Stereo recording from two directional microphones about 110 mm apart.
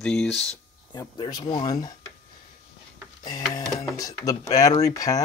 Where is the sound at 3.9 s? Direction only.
35° left (ahead or behind).